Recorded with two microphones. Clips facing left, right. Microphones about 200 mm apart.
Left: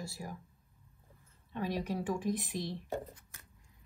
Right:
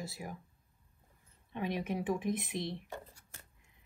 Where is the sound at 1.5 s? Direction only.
20° right (ahead or behind).